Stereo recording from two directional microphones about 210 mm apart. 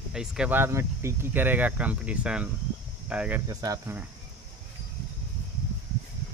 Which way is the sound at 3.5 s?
15° right (ahead or behind).